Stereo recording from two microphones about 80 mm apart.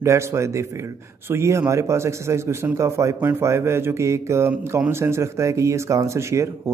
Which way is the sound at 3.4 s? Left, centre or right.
Right.